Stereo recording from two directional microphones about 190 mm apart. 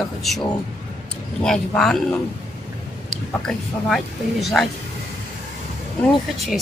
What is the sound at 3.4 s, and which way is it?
Speech, centre (ahead or behind).